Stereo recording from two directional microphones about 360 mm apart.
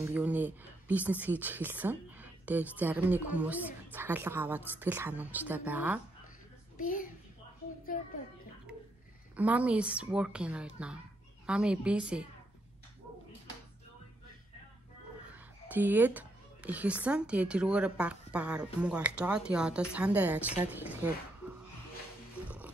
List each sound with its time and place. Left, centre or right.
0.0 s speech: centre
6.8 s a child's voice: left
9.4 s speech: centre
15.7 s speech: centre